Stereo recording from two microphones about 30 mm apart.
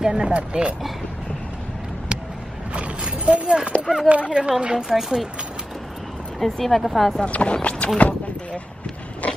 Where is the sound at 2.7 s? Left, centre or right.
Right.